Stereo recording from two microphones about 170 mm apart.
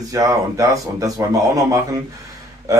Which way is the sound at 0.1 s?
20° right (ahead or behind).